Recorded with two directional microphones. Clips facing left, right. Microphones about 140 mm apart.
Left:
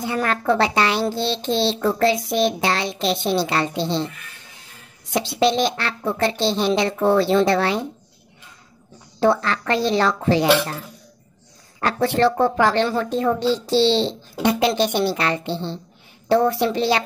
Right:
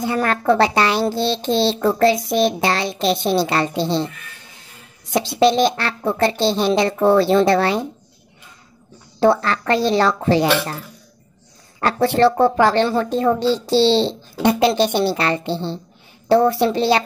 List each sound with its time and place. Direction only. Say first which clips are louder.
0.0 s speech: right 3 dB; 40° right (ahead or behind)
5.1 s speech: right 3 dB; 35° right (ahead or behind)
9.2 s speech: right 3 dB; 35° right (ahead or behind)
11.8 s speech: right 3 dB; 35° right (ahead or behind)